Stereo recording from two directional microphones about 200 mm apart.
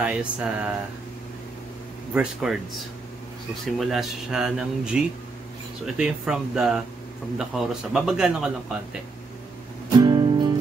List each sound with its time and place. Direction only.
0.0 s a man's voice: 5° right (ahead or behind)
2.4 s a man's voice: centre (ahead or behind)
3.8 s a man's voice: centre (ahead or behind)
9.8 s music: 20° right (ahead or behind)